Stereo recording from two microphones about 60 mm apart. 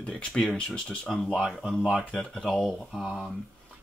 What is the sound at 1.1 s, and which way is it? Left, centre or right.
Speech, centre.